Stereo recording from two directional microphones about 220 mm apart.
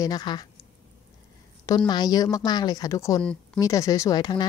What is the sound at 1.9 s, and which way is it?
A woman's voice, 20° left (ahead or behind).